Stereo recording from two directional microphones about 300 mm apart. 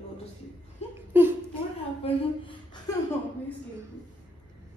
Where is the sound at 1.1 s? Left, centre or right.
Centre.